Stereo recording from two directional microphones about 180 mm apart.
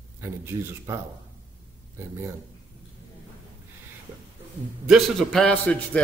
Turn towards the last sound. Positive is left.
turn(degrees=5)  # may be behind; listen again after turning